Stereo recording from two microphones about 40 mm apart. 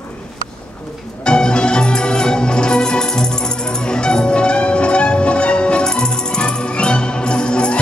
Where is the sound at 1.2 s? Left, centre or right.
Left.